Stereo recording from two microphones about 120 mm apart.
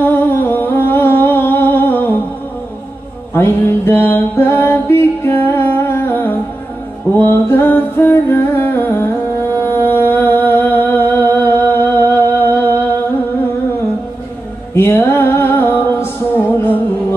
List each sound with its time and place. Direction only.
0.0 s humming: 15° left (ahead or behind)
3.3 s music: 20° left (ahead or behind)
14.8 s music: 20° left (ahead or behind)